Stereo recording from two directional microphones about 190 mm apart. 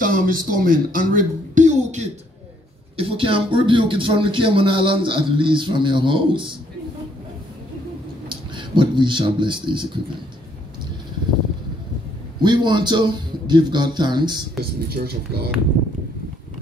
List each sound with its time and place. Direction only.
0.0 s speech: 45° right (ahead or behind); by 6.5 s 25° right (ahead or behind)
8.3 s speech: 25° right (ahead or behind)
12.4 s speech: 25° right (ahead or behind)
14.6 s speech: 55° right (ahead or behind)